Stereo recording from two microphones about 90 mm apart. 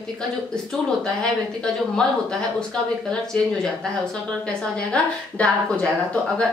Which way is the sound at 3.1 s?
10° left (ahead or behind).